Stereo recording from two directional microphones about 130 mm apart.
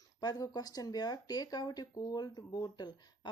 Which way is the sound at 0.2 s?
30° left (ahead or behind).